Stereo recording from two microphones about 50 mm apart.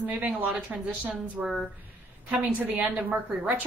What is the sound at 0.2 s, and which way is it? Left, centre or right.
Speech, right.